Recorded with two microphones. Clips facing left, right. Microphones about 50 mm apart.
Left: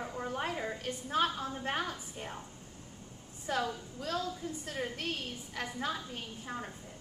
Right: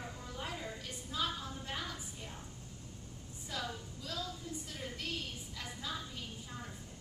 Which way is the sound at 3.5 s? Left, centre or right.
Left.